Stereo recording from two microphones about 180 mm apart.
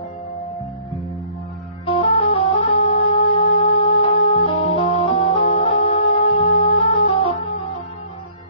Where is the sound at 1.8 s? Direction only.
30° left (ahead or behind).